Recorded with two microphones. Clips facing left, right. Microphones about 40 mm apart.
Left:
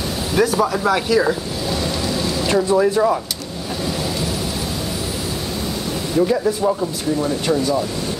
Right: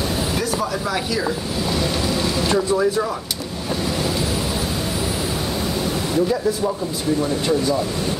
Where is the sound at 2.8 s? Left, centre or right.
Centre.